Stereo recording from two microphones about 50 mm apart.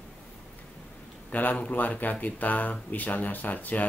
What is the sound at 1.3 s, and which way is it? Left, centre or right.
Speech, left.